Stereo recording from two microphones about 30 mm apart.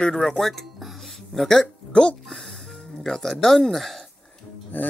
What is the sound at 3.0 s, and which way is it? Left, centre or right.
Speech, centre.